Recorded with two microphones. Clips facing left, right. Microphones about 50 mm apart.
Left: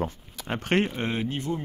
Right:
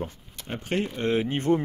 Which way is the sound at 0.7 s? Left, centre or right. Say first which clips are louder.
Left 4 dB; left.